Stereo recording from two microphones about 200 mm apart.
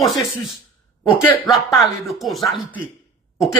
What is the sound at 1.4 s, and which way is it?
A man's voice, centre (ahead or behind).